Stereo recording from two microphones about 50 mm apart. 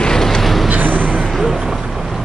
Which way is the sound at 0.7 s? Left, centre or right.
Right.